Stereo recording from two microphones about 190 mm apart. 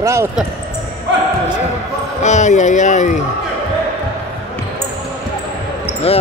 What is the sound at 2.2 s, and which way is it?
Speech, 40° left (ahead or behind).